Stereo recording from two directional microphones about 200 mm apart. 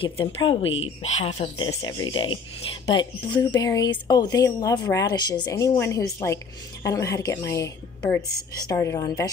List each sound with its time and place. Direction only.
0.0 s speech: 25° left (ahead or behind)
1.8 s speech: 20° left (ahead or behind)